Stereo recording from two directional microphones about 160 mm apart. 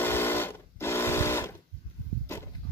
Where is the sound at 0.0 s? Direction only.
15° left (ahead or behind).